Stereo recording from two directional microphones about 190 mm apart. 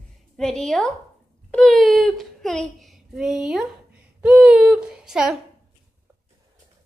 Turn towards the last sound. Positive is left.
turn(degrees=-5)  # may be behind; listen again after turning